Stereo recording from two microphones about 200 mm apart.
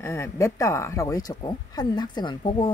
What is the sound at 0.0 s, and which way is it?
Speech, 15° left (ahead or behind).